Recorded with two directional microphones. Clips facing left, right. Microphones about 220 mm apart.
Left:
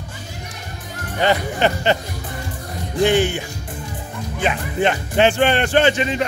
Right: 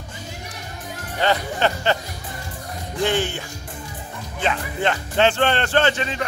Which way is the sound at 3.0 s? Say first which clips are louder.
Left 6 dB; 15° left (ahead or behind).